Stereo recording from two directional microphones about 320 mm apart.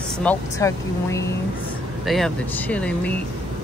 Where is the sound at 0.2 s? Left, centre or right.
Centre.